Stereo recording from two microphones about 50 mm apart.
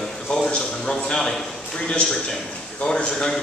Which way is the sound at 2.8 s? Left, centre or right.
Centre.